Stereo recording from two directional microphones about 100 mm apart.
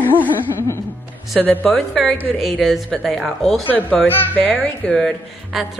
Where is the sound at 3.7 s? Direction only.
15° left (ahead or behind).